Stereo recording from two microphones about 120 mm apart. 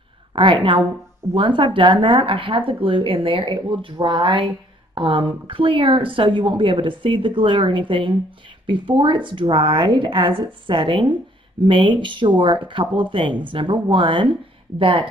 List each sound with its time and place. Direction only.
0.3 s a woman's voice: 45° right (ahead or behind)